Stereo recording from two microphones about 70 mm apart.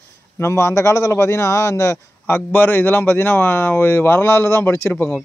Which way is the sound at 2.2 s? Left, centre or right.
Left.